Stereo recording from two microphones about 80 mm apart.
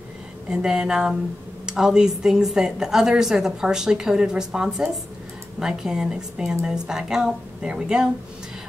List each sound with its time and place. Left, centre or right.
0.5 s a woman's voice: centre